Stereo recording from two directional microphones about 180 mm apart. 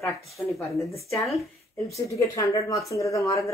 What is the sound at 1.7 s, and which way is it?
Speech, 15° left (ahead or behind).